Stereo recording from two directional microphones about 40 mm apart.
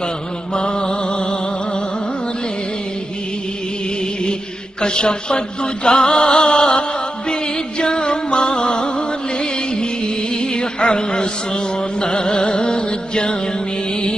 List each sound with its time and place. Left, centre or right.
0.6 s mantra: left
4.8 s music: left
7.8 s music: left